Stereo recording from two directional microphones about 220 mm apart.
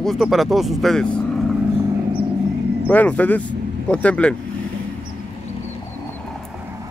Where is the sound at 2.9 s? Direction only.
5° left (ahead or behind).